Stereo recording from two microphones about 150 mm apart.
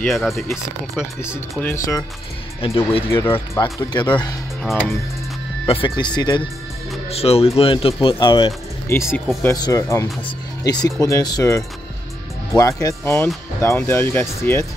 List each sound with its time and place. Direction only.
0.0 s speech: centre (ahead or behind)
1.6 s speech: 15° left (ahead or behind)
2.6 s speech: 40° left (ahead or behind)
3.1 s speech: 15° left (ahead or behind)
3.9 s speech: 30° left (ahead or behind)
5.7 s speech: 35° left (ahead or behind)
7.1 s speech: 40° left (ahead or behind)
8.8 s speech: 20° left (ahead or behind)